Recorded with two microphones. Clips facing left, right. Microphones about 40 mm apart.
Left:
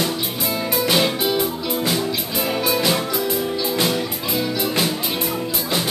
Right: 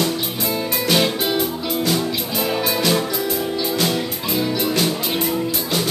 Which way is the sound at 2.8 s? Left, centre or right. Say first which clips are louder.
Right 3 dB; centre.